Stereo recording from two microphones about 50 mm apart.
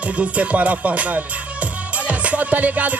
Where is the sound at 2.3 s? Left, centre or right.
Right.